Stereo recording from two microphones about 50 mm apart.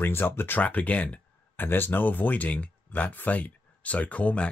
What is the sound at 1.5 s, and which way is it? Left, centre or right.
Speech, left.